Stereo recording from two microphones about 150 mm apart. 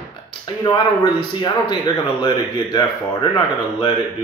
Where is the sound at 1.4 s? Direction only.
30° left (ahead or behind).